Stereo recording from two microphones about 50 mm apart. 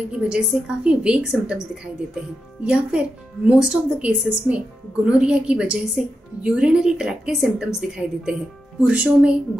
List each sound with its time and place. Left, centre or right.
0.1 s a woman's voice: centre
8.9 s speech: right